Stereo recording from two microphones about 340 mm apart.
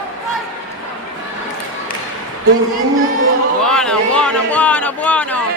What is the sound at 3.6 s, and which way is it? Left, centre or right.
A man's voice, centre.